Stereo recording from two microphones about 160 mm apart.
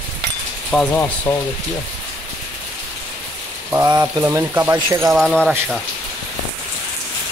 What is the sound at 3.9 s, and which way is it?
Speech, 25° right (ahead or behind).